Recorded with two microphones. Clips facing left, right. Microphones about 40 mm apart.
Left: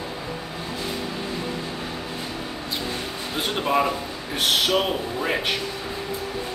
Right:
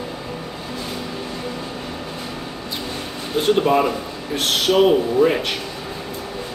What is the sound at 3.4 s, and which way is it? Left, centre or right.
Speech, centre.